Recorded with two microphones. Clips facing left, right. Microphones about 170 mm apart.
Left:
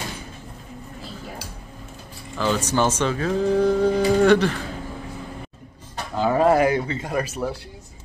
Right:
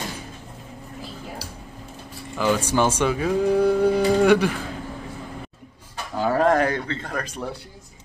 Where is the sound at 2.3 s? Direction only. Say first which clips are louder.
Right 1 dB; 10° right (ahead or behind).